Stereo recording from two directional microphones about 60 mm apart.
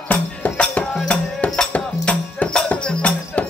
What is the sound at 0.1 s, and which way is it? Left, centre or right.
Music, left.